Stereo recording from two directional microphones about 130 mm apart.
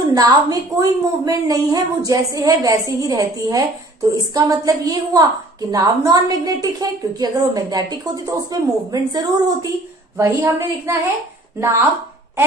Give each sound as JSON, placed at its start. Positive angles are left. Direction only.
{"t": 0.1, "sound": "a woman's voice", "side_deg": -25}